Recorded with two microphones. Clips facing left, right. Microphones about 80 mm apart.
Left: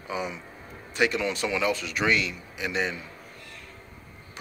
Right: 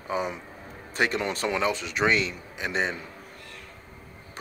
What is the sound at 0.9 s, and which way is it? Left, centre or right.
Speech, right.